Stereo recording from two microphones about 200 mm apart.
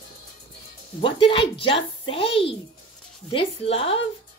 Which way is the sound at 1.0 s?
25° left (ahead or behind).